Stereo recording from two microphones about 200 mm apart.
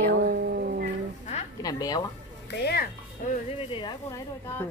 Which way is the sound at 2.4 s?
55° left (ahead or behind).